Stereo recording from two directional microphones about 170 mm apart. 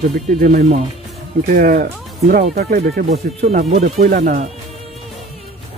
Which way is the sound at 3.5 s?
45° right (ahead or behind).